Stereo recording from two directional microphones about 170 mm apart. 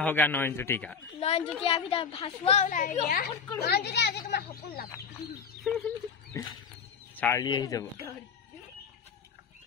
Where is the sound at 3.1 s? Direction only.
65° left (ahead or behind).